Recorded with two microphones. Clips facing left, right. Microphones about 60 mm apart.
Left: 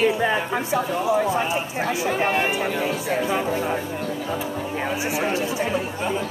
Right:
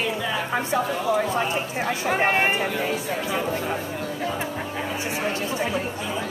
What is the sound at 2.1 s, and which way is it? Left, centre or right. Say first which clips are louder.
Speech: right 2 dB; right.